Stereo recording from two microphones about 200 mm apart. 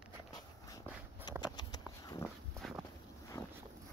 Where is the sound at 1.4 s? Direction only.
20° left (ahead or behind).